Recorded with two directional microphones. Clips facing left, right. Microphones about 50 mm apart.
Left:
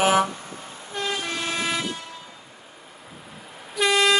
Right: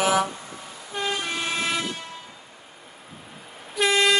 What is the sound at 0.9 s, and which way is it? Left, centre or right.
Vehicle, centre.